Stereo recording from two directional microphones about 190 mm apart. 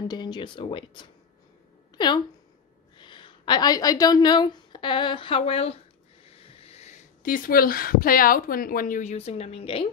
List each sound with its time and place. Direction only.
0.1 s a woman's voice: 25° left (ahead or behind)